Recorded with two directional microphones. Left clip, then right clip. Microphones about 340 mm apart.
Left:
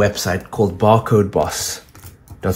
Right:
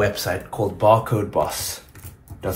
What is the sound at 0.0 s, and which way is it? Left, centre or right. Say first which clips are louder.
Speech: left 4 dB; left.